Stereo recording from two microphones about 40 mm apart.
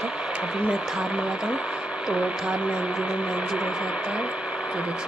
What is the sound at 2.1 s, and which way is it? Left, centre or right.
Speech, right.